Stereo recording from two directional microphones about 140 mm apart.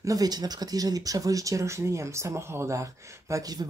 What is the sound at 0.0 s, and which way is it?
Speech, 25° right (ahead or behind).